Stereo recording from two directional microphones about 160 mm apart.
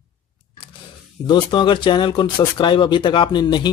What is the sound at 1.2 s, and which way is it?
Speech, 30° left (ahead or behind).